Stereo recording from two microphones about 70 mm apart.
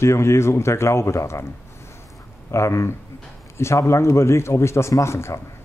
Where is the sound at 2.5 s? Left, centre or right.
Left.